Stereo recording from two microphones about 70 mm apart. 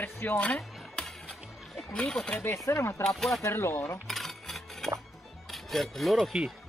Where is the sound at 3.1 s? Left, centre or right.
Centre.